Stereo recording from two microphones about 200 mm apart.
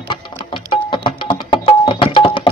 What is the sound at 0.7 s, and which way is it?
Music, 25° left (ahead or behind).